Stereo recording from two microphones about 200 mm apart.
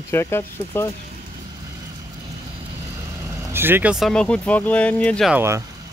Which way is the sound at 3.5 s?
10° right (ahead or behind).